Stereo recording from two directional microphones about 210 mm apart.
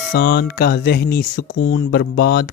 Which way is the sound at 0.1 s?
50° left (ahead or behind).